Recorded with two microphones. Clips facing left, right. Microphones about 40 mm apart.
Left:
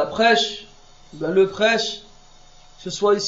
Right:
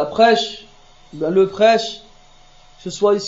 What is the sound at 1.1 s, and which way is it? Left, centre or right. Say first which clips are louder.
A man's voice: right 2 dB; right.